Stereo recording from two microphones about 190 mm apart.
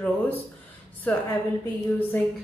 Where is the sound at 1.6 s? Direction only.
10° left (ahead or behind).